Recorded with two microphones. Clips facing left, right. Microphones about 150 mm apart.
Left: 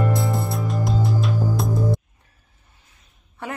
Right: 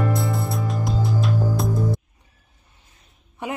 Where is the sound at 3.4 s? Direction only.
15° right (ahead or behind).